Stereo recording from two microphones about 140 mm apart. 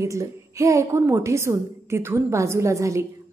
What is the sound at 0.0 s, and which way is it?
A woman's voice, 20° right (ahead or behind).